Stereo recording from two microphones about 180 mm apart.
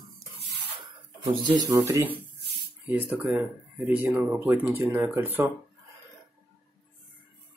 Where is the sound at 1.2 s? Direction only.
20° right (ahead or behind).